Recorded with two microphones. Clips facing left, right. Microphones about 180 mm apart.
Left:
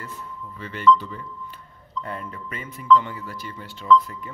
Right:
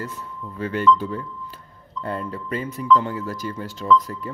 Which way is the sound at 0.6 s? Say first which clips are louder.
Even; 45° right (ahead or behind).